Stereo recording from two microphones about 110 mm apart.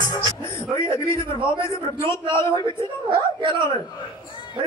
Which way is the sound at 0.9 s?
25° left (ahead or behind).